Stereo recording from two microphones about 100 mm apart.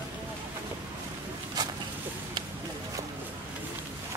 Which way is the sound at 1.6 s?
40° right (ahead or behind).